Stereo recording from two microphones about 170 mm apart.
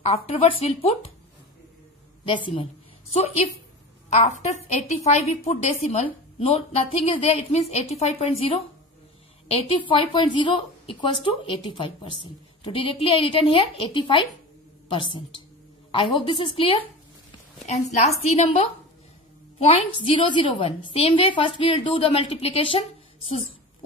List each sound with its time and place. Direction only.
0.0 s a woman's voice: 35° left (ahead or behind)
2.2 s a woman's voice: 30° left (ahead or behind)